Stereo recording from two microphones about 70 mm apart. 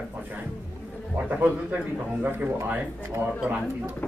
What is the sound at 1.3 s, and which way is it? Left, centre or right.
Speech, right.